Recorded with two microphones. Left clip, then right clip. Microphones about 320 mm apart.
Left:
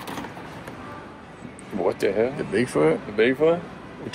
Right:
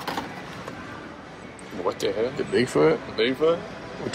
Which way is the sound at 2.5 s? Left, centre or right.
Centre.